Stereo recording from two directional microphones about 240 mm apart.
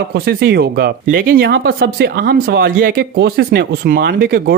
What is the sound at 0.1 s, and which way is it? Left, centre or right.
Speech, right.